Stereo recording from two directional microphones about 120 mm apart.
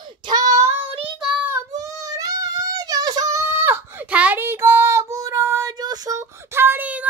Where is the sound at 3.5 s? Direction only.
20° right (ahead or behind).